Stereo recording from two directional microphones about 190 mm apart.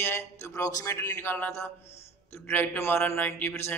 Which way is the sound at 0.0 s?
15° left (ahead or behind).